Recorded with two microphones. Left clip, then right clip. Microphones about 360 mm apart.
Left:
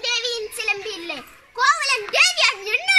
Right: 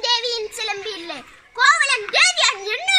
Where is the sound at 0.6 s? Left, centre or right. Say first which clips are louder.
Left 1 dB; centre.